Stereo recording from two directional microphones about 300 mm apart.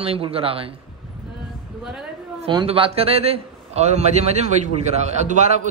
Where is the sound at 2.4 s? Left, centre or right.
Centre.